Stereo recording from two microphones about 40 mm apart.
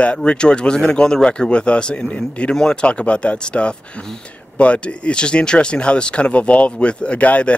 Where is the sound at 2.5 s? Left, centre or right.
Centre.